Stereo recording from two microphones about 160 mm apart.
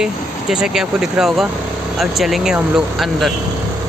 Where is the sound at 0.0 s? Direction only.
5° right (ahead or behind).